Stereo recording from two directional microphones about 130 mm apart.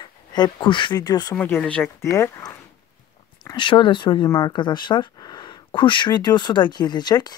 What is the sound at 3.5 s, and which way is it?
Speech, 40° left (ahead or behind).